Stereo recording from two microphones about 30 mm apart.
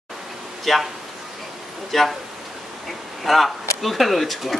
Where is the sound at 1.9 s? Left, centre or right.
Centre.